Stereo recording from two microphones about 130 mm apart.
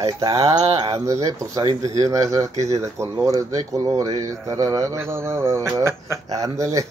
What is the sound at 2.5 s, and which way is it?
Speech, 60° right (ahead or behind).